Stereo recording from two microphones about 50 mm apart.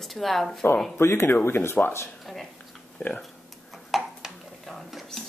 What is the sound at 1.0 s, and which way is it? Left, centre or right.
Speech, left.